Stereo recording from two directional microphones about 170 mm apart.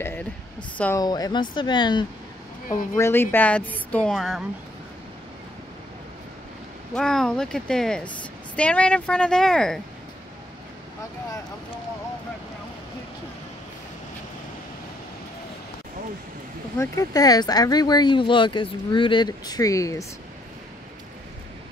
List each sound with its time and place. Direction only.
0.0 s a sound: 10° left (ahead or behind)
0.9 s speech: 20° left (ahead or behind)
3.0 s speech: 15° left (ahead or behind)
6.9 s speech: 5° left (ahead or behind)
16.7 s speech: 15° left (ahead or behind)